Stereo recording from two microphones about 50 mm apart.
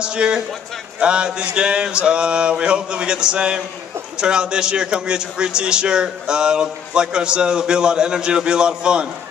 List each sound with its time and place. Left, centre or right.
0.0 s a man's voice: centre
0.9 s a sound: centre
4.2 s a man's voice: centre